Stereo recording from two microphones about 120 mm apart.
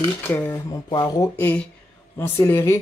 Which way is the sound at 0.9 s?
35° left (ahead or behind).